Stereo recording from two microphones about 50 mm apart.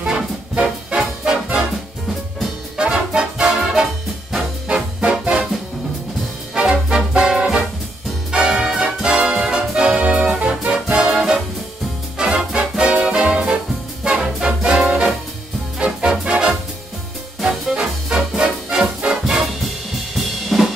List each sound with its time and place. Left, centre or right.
0.0 s music: centre
2.8 s music: centre
6.5 s music: centre
20.4 s drum kit: centre